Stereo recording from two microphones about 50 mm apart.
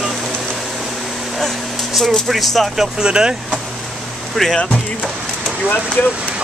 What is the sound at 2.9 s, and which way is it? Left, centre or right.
Speech, centre.